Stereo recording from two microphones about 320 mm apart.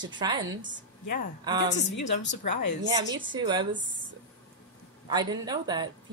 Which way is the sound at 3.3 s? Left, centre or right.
Centre.